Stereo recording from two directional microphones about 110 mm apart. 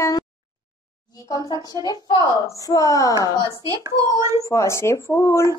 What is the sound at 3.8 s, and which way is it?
Speech, 30° right (ahead or behind).